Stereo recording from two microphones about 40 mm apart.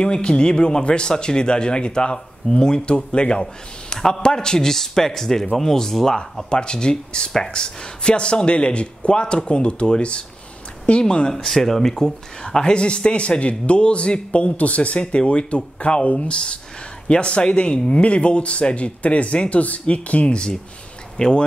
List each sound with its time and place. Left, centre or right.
0.0 s a man's voice: left
6.5 s speech: left
11.4 s speech: centre; by 21.3 s left